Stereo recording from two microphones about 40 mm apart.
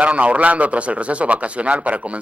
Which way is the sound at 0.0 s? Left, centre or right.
Right.